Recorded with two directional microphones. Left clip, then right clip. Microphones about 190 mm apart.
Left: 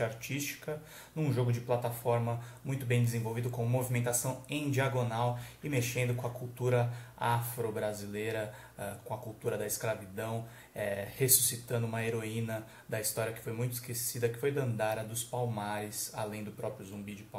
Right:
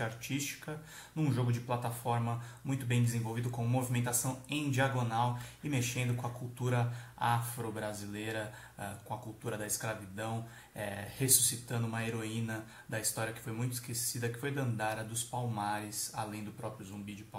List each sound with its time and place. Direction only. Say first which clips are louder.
1.1 s speech: left 2 dB; 5° left (ahead or behind)